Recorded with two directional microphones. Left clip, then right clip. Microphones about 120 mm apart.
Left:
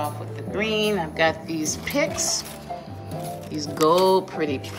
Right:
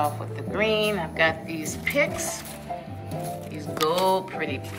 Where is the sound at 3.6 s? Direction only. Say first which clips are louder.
Left 6 dB; 45° left (ahead or behind).